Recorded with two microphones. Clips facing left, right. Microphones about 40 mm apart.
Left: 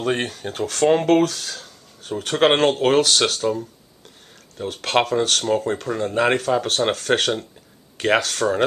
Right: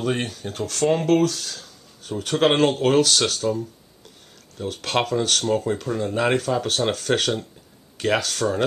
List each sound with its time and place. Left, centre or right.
0.0 s speech: left
0.3 s speech: left
0.6 s speech: left